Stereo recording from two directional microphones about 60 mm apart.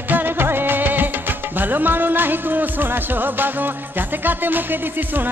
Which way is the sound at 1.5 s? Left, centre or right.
Right.